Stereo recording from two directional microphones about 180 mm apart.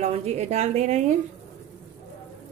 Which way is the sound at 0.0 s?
35° right (ahead or behind).